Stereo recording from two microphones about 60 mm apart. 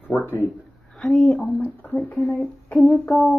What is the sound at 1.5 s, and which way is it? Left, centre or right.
Speech, left.